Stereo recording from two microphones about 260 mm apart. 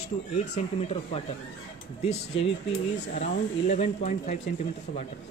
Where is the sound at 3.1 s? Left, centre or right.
Left.